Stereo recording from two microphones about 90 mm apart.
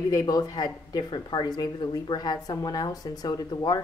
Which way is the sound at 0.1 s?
45° left (ahead or behind).